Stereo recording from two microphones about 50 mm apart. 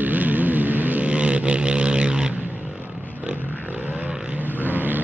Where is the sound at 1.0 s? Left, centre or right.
Right.